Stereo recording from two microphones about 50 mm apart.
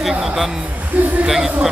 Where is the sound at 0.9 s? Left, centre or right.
Right.